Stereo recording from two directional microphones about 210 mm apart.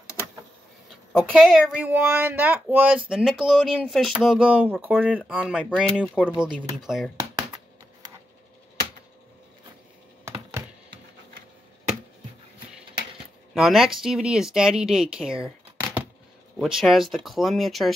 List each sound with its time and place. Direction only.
1.1 s a woman's voice: centre (ahead or behind)
7.2 s computer keyboard: 20° right (ahead or behind)
13.6 s a woman's voice: centre (ahead or behind)